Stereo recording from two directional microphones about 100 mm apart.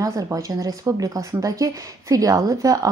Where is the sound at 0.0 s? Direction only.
35° right (ahead or behind).